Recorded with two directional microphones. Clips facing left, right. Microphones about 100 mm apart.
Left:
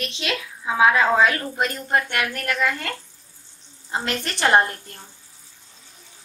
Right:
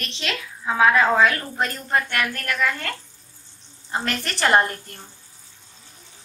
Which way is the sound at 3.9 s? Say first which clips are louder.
Even; 20° left (ahead or behind).